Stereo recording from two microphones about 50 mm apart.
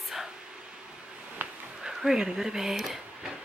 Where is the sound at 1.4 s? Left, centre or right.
Right.